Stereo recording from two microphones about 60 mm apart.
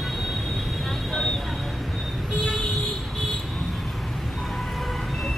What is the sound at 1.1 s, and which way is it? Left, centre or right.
Vehicle, centre.